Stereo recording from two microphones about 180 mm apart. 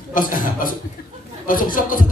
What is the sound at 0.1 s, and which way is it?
Speech, 50° left (ahead or behind).